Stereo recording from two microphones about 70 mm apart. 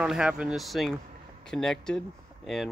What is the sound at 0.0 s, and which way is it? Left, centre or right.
Speech, centre.